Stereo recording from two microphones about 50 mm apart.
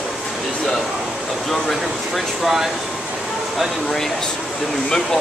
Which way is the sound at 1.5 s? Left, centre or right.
Centre.